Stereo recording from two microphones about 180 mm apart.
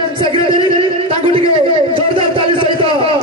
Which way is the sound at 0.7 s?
30° right (ahead or behind).